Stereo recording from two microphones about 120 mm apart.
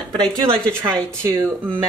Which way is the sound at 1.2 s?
20° right (ahead or behind).